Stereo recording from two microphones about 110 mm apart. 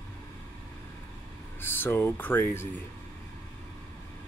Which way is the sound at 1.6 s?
20° left (ahead or behind).